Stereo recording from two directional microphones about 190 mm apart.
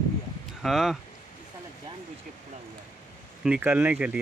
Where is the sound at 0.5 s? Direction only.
Centre (ahead or behind).